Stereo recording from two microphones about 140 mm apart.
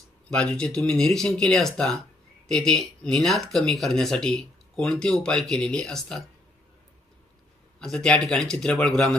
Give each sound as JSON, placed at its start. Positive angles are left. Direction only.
{"t": 0.3, "sound": "speech", "side_deg": 5}
{"t": 7.8, "sound": "speech", "side_deg": 5}